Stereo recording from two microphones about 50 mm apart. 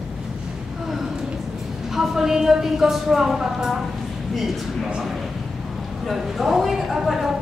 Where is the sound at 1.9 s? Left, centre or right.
Centre.